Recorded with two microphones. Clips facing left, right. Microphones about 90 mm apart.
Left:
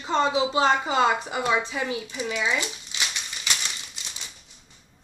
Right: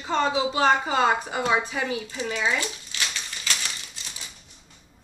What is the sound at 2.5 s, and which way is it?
Rattle, 20° left (ahead or behind).